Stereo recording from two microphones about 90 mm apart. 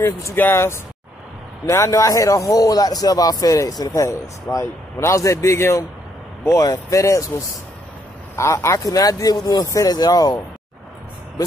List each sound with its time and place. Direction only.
0.0 s a man's voice: 35° left (ahead or behind)